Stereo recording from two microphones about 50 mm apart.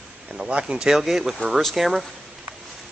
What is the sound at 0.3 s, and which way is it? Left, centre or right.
Speech, right.